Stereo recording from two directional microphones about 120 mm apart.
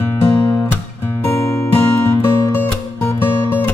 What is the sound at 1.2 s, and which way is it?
Music, 20° left (ahead or behind).